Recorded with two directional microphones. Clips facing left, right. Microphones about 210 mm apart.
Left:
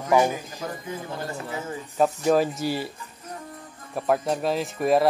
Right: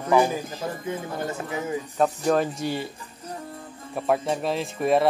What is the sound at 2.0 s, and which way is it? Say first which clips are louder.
Speech: left 2 dB; 5° left (ahead or behind).